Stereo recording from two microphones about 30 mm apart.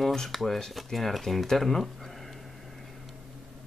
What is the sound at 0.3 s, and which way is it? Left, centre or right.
Speech, centre.